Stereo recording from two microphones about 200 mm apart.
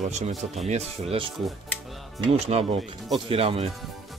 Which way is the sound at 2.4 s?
30° right (ahead or behind).